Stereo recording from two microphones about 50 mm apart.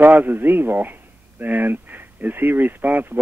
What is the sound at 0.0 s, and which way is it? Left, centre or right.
Speech, right.